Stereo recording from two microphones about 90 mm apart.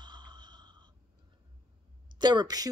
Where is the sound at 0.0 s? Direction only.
55° right (ahead or behind).